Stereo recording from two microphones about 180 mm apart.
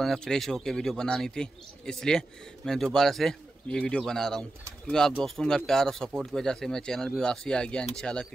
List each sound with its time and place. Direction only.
0.0 s speech: 5° left (ahead or behind)